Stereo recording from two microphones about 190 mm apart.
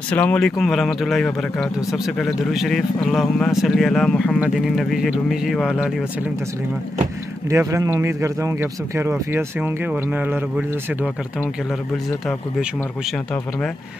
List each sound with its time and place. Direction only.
0.1 s speech: 5° left (ahead or behind)
7.4 s speech: 15° right (ahead or behind)
12.3 s speech: centre (ahead or behind)